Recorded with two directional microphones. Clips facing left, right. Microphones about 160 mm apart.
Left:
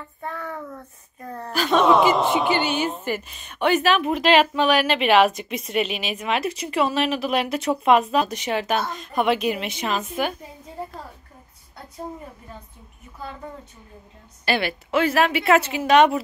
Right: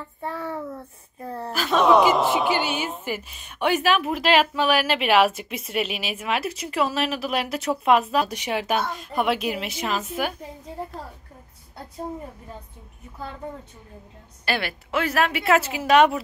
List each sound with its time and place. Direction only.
0.2 s child singing: 30° right (ahead or behind)
1.5 s a woman's voice: centre (ahead or behind)
14.4 s a woman's voice: centre (ahead or behind)